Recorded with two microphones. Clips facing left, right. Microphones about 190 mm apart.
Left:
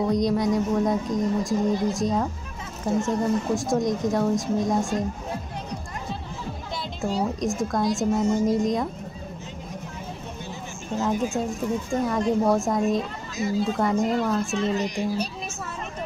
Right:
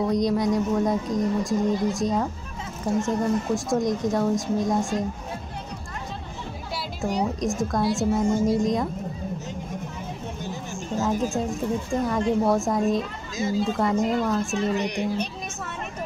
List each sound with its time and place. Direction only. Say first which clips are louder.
0.0 s speech: even; centre (ahead or behind)
7.3 s speech: even; centre (ahead or behind)
11.0 s speech: even; centre (ahead or behind)
13.4 s speech: even; 25° right (ahead or behind)
13.7 s speech: even; centre (ahead or behind)
14.8 s a child's voice: even; 60° right (ahead or behind)